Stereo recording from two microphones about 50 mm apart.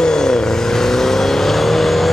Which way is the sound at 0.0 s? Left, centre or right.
Centre.